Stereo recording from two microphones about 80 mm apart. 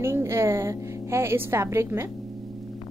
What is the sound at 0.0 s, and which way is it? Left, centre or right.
Music, right.